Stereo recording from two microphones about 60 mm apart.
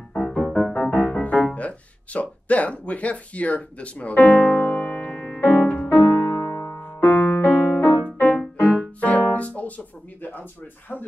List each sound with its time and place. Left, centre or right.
0.1 s music: centre
5.9 s music: left
6.2 s music: centre
6.5 s music: left
6.8 s music: left